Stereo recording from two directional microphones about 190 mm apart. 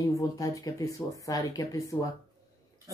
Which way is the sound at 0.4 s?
20° left (ahead or behind).